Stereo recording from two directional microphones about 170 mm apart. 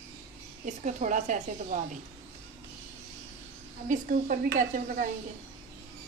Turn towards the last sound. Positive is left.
turn(degrees=-55)  # may be behind; listen again after turning